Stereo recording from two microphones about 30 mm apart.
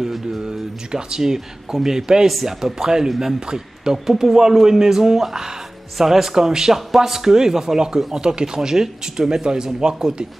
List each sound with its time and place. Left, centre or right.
0.4 s a man's voice: right